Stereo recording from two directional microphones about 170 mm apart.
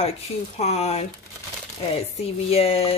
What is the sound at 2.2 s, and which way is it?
Speech, 35° left (ahead or behind).